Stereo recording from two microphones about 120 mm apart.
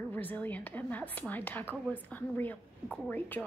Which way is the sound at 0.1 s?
15° left (ahead or behind).